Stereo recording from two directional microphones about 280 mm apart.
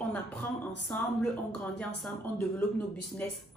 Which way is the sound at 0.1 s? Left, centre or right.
Centre.